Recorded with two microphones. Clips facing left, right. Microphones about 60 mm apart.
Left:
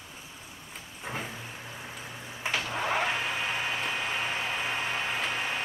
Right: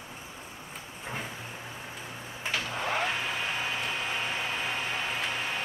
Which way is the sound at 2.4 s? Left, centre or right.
Centre.